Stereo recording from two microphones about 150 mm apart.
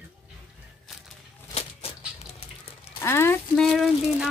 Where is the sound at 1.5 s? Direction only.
40° left (ahead or behind).